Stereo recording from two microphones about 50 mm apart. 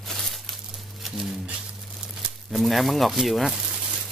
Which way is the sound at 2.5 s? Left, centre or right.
Centre.